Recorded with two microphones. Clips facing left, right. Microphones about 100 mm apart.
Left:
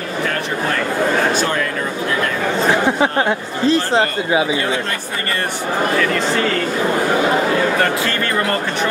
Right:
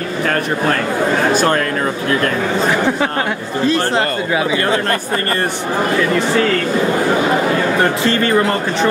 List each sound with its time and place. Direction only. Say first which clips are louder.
1.3 s speech: right 5 dB; 50° right (ahead or behind)
2.7 s speech: left 1 dB; 25° left (ahead or behind)
8.1 s speech: right 5 dB; 25° right (ahead or behind)